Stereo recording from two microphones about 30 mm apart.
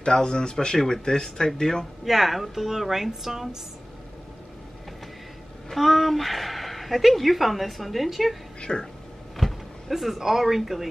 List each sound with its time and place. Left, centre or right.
0.0 s speech: left
2.0 s a woman's voice: centre
5.8 s a woman's voice: centre
8.5 s speech: left
9.4 s power windows: centre
10.2 s a woman's voice: centre